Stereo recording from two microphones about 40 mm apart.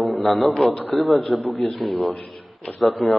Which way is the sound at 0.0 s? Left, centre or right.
Centre.